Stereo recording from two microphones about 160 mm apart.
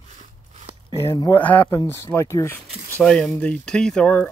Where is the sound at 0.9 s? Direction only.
20° left (ahead or behind).